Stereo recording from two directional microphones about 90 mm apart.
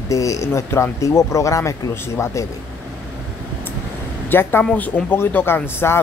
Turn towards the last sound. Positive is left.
turn(degrees=25)  # may be behind; listen again after turning